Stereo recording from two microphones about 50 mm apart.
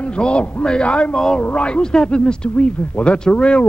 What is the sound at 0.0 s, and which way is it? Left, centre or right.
A man's voice, left.